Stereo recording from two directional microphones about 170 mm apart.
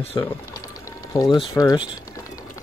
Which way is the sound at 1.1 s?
20° left (ahead or behind).